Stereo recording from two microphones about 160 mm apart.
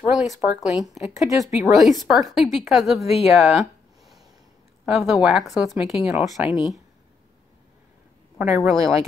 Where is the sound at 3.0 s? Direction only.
40° left (ahead or behind).